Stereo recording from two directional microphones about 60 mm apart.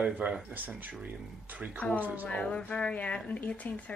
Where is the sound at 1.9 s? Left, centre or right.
Right.